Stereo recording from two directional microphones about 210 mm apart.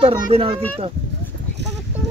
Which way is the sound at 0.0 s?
25° right (ahead or behind).